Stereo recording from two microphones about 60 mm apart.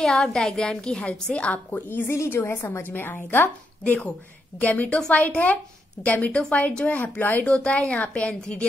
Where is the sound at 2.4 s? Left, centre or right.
Left.